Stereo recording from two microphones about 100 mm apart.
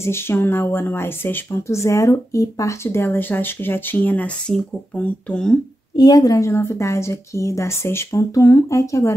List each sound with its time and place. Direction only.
0.0 s a woman's voice: 25° left (ahead or behind)
5.9 s a woman's voice: 40° left (ahead or behind)